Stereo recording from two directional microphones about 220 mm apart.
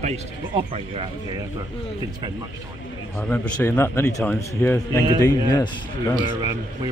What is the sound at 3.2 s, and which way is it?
A man's voice, 5° left (ahead or behind).